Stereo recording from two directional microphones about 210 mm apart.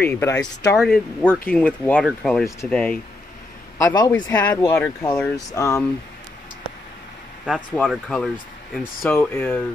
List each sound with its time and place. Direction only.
0.0 s speech: 10° left (ahead or behind)
0.7 s speech: centre (ahead or behind)
3.7 s speech: 15° left (ahead or behind)
7.4 s speech: centre (ahead or behind)